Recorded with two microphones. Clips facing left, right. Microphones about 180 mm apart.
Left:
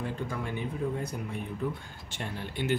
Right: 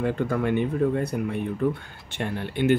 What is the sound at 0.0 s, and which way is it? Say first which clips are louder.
Speech: right 10 dB; 65° right (ahead or behind).